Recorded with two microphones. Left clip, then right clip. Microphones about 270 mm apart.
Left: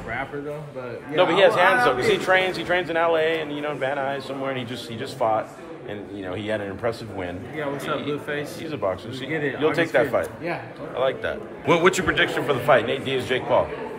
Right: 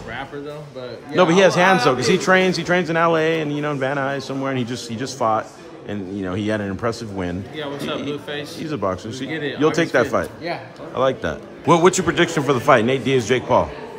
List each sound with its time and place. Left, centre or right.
1.1 s a man's voice: right